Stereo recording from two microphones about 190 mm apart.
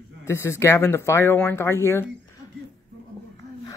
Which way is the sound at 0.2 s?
15° left (ahead or behind).